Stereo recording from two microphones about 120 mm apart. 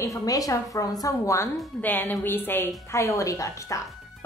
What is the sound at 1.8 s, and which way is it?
A woman's voice, 15° left (ahead or behind).